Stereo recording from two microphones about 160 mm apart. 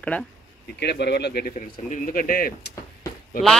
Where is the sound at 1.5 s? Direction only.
55° left (ahead or behind).